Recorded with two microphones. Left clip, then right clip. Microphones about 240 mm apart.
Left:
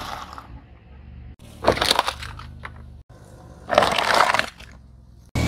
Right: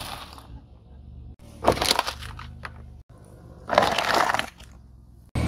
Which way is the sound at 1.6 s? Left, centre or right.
Centre.